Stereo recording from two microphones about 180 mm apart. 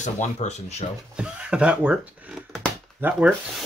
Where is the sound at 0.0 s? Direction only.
40° left (ahead or behind).